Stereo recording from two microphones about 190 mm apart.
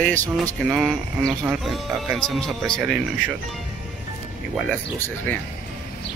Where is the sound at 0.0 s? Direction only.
10° left (ahead or behind).